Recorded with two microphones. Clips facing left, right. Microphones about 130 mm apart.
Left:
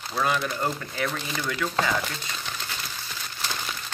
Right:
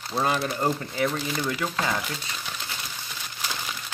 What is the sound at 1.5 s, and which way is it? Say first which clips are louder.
Speech: left 4 dB; 30° right (ahead or behind).